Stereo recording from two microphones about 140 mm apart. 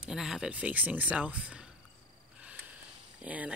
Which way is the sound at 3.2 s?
10° right (ahead or behind).